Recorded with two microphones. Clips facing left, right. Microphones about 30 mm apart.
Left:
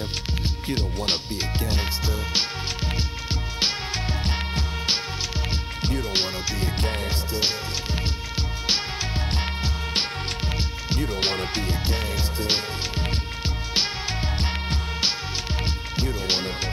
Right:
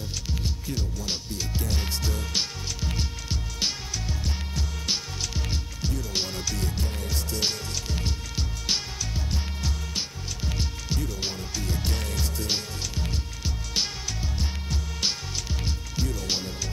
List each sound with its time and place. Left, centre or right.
0.3 s speech: left
3.5 s music: left
6.3 s music: left
6.8 s music: left
7.3 s music: left
9.3 s music: left
15.6 s music: left